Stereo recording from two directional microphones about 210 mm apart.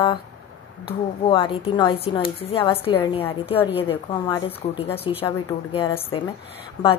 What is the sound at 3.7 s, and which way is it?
A woman's voice, 25° left (ahead or behind).